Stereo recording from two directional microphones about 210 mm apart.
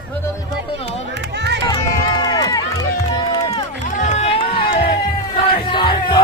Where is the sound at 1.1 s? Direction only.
55° right (ahead or behind).